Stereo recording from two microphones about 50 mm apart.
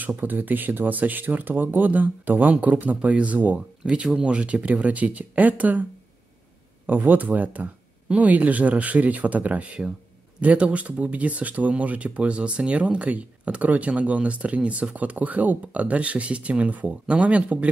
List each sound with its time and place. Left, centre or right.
0.2 s speech: right
3.5 s speech: centre
6.9 s speech: right